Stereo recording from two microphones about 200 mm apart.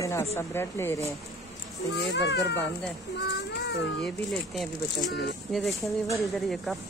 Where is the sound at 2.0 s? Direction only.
60° left (ahead or behind).